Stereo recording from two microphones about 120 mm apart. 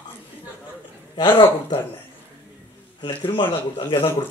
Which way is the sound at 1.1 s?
40° left (ahead or behind).